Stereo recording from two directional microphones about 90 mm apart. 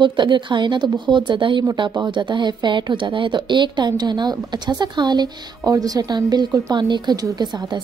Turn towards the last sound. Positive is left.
turn(degrees=-50)  # may be behind; listen again after turning